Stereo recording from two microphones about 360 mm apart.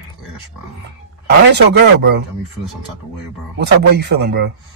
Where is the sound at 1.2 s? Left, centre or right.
Right.